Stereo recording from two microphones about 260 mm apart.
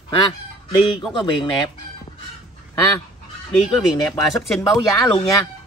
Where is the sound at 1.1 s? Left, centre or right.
Centre.